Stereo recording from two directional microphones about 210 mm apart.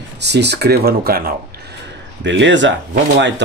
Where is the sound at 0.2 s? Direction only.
55° right (ahead or behind).